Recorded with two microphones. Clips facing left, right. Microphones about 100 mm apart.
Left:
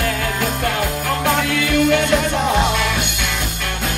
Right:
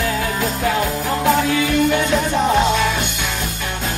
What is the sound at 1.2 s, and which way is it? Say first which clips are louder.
Music: right 3 dB; 65° left (ahead or behind).